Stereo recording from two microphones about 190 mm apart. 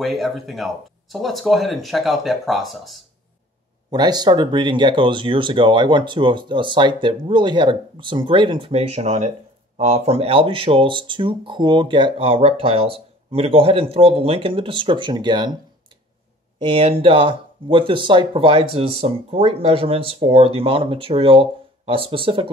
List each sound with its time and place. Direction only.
0.0 s speech: centre (ahead or behind)
3.9 s speech: 20° right (ahead or behind)
16.5 s speech: 30° right (ahead or behind)